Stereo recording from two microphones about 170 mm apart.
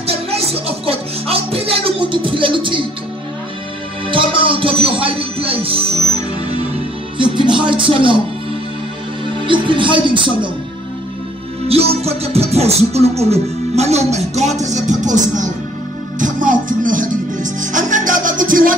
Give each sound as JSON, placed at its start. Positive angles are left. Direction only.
{"t": 0.0, "sound": "music", "side_deg": -35}
{"t": 4.1, "sound": "music", "side_deg": -30}
{"t": 9.3, "sound": "music", "side_deg": -30}
{"t": 11.6, "sound": "music", "side_deg": -35}